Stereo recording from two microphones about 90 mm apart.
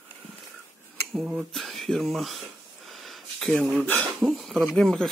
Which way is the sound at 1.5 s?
Centre (ahead or behind).